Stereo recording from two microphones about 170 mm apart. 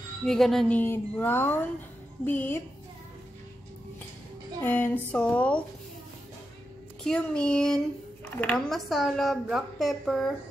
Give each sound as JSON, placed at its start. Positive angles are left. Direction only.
{"t": 0.2, "sound": "speech", "side_deg": 5}
{"t": 4.6, "sound": "speech", "side_deg": 10}
{"t": 7.1, "sound": "speech", "side_deg": 5}